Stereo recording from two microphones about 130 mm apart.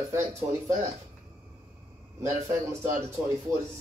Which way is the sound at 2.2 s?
20° right (ahead or behind).